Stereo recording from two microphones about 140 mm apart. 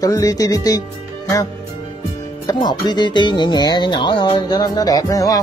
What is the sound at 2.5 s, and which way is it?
Speech, 30° left (ahead or behind).